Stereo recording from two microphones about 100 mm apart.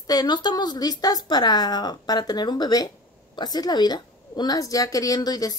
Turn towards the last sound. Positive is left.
turn(degrees=40)  # may be behind; listen again after turning